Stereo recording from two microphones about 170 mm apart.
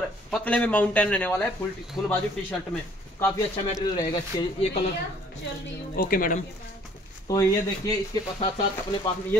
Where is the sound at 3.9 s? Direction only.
25° left (ahead or behind).